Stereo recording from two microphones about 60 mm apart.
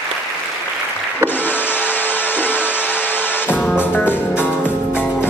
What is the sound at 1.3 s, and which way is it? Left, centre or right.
Vacuum cleaner, left.